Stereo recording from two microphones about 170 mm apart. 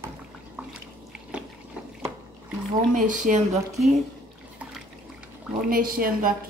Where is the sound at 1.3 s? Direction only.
5° right (ahead or behind).